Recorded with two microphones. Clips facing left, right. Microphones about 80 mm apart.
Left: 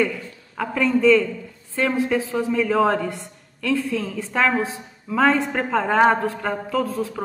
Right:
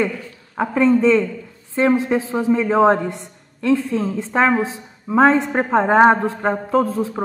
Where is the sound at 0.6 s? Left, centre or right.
Right.